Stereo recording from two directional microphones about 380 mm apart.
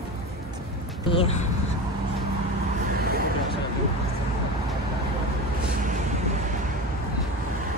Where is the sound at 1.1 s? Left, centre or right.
Centre.